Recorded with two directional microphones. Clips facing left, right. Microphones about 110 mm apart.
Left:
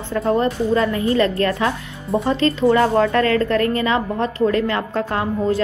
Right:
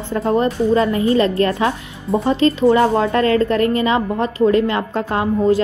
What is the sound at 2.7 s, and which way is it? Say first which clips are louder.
Speech: even; 25° right (ahead or behind).